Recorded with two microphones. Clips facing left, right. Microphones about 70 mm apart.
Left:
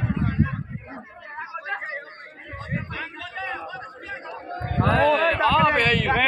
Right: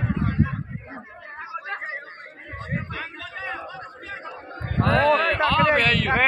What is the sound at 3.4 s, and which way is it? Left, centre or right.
Chatter, right.